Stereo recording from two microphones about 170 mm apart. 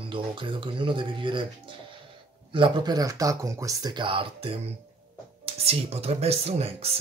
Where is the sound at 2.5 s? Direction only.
25° right (ahead or behind).